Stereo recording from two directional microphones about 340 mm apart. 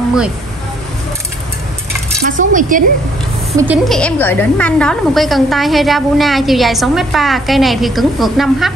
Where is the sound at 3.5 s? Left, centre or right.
Centre.